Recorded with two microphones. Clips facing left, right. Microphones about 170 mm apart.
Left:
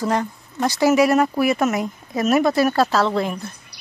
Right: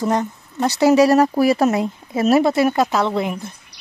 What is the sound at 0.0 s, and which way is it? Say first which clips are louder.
Speech: right 2 dB; 20° right (ahead or behind).